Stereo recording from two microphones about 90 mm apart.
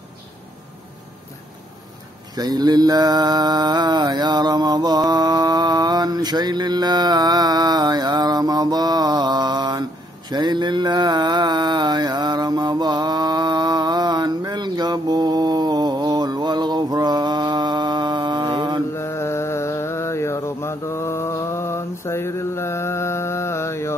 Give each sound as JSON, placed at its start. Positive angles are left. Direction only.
{"t": 2.3, "sound": "mantra", "side_deg": -45}
{"t": 18.9, "sound": "mantra", "side_deg": 30}